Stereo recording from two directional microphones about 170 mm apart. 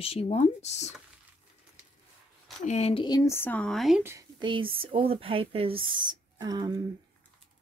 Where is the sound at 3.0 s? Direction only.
20° left (ahead or behind); by 4.0 s centre (ahead or behind).